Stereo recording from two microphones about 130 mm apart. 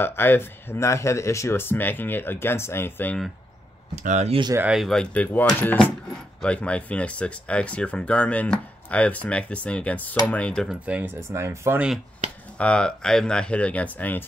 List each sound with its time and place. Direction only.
0.0 s speech: 15° left (ahead or behind)
3.9 s speech: 70° right (ahead or behind)
4.6 s speech: 10° right (ahead or behind)
4.8 s speech: 5° left (ahead or behind)
10.7 s speech: 10° right (ahead or behind)
12.5 s speech: 10° left (ahead or behind)